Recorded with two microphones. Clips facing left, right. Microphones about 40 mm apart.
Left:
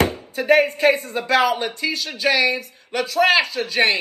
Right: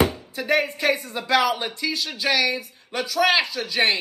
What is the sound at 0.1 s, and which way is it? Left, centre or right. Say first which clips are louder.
Speech: left 6 dB; left.